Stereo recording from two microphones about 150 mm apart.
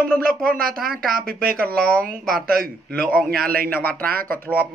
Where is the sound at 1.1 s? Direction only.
80° right.